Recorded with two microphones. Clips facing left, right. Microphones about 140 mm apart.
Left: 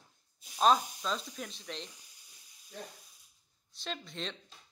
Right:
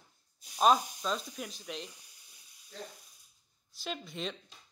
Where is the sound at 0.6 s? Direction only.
5° right (ahead or behind).